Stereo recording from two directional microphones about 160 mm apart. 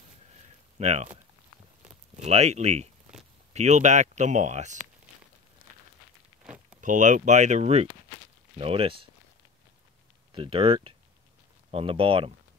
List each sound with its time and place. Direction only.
0.7 s speech: 45° right (ahead or behind)
6.4 s a sound: 5° right (ahead or behind)
6.8 s speech: 50° right (ahead or behind); by 9.1 s 35° right (ahead or behind)
10.3 s speech: 35° right (ahead or behind)